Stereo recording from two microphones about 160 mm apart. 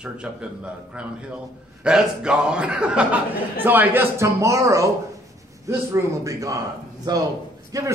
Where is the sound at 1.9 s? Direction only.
5° right (ahead or behind).